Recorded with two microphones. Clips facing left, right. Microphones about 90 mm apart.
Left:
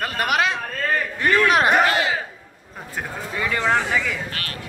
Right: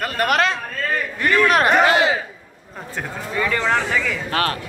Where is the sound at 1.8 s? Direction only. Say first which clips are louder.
Right 4 dB; 20° right (ahead or behind).